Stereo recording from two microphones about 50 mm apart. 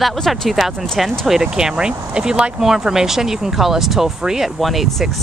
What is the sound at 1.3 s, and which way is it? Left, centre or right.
Speech, centre.